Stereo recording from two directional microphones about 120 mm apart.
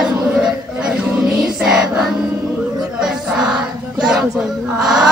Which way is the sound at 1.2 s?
5° right (ahead or behind).